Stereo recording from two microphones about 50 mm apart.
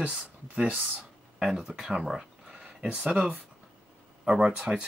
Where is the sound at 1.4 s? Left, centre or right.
Centre.